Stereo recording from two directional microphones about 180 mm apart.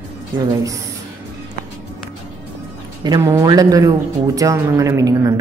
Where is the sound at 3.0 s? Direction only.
20° right (ahead or behind).